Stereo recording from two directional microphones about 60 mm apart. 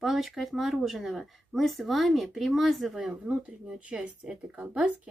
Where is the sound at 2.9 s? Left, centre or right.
Centre.